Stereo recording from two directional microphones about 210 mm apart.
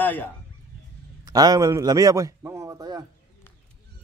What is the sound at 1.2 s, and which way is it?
A man's voice, 15° right (ahead or behind).